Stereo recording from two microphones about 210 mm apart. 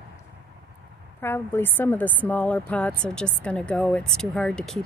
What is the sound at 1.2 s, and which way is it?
Speech, 10° left (ahead or behind).